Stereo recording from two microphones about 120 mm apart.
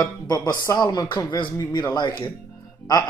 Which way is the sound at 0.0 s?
35° left (ahead or behind).